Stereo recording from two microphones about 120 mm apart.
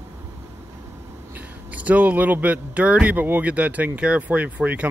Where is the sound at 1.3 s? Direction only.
10° right (ahead or behind).